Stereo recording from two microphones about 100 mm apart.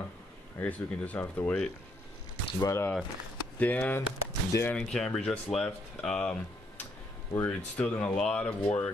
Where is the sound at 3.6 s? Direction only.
15° left (ahead or behind).